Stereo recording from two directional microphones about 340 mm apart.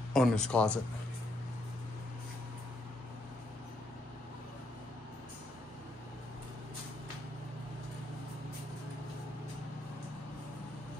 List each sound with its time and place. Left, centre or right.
0.1 s speech: centre